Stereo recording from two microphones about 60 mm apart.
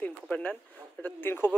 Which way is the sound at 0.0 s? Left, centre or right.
Left.